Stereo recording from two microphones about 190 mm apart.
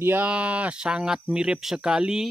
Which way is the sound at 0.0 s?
10° right (ahead or behind).